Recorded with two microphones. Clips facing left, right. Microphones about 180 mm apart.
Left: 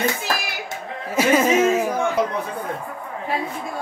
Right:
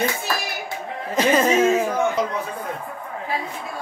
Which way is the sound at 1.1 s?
10° left (ahead or behind).